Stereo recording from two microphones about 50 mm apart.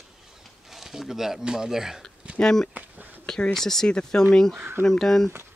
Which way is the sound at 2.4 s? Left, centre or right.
Centre.